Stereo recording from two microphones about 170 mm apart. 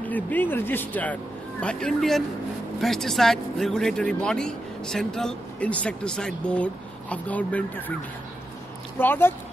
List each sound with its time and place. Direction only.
0.0 s speech: 10° left (ahead or behind)
8.9 s speech: 10° left (ahead or behind)